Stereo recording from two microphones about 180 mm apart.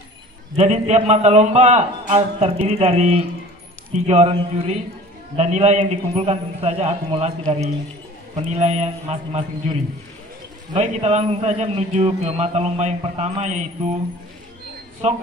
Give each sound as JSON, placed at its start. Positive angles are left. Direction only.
{"t": 0.6, "sound": "a man's voice", "side_deg": -40}
{"t": 10.8, "sound": "a man's voice", "side_deg": -40}
{"t": 15.0, "sound": "a man's voice", "side_deg": -40}